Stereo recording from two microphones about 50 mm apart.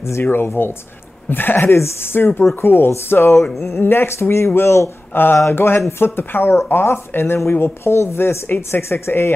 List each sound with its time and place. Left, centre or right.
0.3 s speech: left
7.8 s speech: left